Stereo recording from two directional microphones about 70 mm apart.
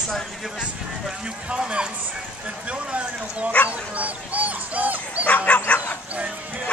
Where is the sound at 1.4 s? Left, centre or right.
Centre.